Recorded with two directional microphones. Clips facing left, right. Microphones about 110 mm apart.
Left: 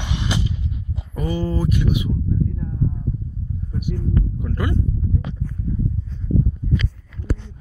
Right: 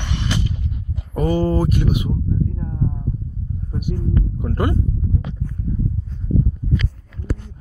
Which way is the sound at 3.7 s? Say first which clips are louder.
Right 1 dB; 40° right (ahead or behind).